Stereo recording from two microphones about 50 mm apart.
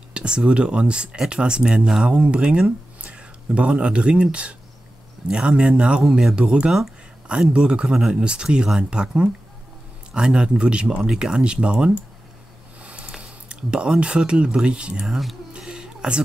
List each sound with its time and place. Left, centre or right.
0.1 s speech: centre
6.0 s speech: centre
6.3 s speech: centre
12.8 s a sound: right
13.1 s speech: centre
15.0 s speech: centre
15.5 s a sound: centre